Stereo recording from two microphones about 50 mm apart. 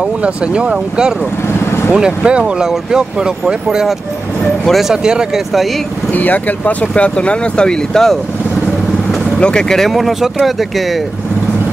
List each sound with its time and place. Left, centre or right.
0.2 s speech: right
6.1 s speech: left; by 8.2 s centre
9.4 s speech: centre